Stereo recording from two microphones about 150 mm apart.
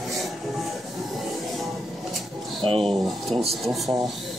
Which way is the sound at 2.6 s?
35° right (ahead or behind).